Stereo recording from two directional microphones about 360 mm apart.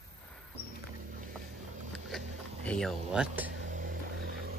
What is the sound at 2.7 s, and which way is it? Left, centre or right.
Speech, centre.